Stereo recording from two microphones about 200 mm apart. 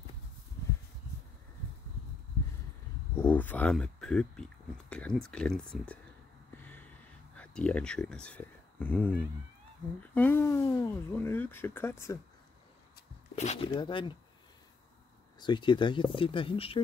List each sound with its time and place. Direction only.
3.2 s speech: 10° left (ahead or behind)
6.5 s a sound: 10° left (ahead or behind)
7.3 s speech: 5° left (ahead or behind)
10.1 s speech: 10° left (ahead or behind)
13.4 s speech: 30° left (ahead or behind)
15.4 s speech: 25° left (ahead or behind)